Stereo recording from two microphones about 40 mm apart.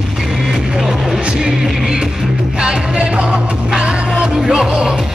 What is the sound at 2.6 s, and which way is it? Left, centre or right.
Music, right.